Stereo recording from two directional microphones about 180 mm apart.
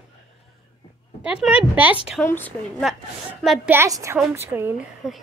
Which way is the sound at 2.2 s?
10° left (ahead or behind).